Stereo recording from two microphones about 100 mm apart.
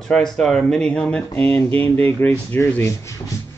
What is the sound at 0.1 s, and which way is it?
Speech, 5° left (ahead or behind).